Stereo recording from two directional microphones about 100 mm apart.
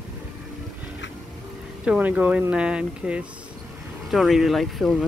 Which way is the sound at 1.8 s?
15° right (ahead or behind).